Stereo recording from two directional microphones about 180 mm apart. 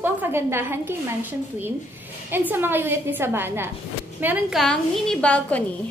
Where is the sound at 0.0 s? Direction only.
10° right (ahead or behind).